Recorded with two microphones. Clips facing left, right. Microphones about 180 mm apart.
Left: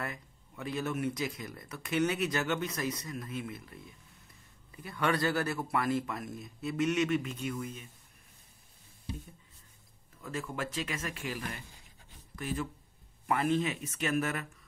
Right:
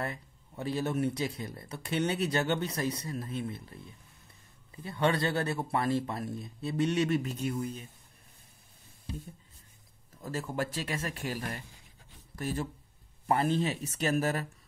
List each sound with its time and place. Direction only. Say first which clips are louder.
0.0 s speech: right 3 dB; 30° right (ahead or behind)
4.8 s speech: right 2 dB; 25° right (ahead or behind)
10.2 s speech: right 3 dB; 35° right (ahead or behind)